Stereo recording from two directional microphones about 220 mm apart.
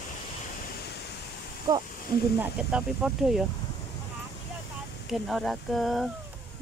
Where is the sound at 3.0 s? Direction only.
Centre (ahead or behind).